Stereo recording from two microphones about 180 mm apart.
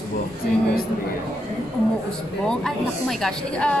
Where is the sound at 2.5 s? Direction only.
Centre (ahead or behind).